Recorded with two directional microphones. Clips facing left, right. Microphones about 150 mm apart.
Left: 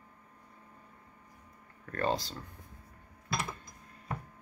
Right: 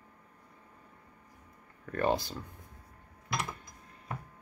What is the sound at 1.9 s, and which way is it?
Speech, 15° right (ahead or behind).